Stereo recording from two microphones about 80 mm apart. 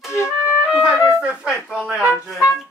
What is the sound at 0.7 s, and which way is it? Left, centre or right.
Music, centre.